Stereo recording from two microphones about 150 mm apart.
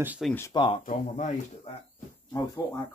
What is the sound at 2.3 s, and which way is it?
Speech, 20° left (ahead or behind).